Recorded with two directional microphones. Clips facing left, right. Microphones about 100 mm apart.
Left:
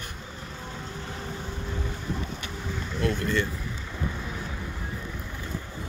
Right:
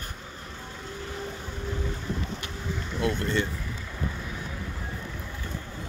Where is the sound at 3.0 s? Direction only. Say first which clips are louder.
Even; 20° right (ahead or behind).